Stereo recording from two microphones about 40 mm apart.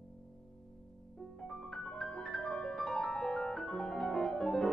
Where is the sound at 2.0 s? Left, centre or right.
Centre.